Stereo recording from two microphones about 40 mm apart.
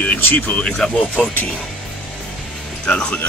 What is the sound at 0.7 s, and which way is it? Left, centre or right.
Speech, centre.